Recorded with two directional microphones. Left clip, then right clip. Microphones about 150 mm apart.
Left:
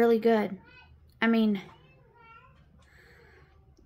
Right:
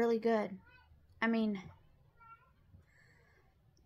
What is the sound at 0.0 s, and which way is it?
Speech, 50° left (ahead or behind).